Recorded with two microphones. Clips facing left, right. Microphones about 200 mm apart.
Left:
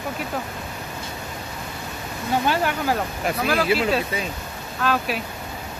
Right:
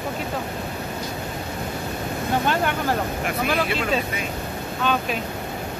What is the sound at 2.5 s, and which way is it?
Speech, 5° left (ahead or behind).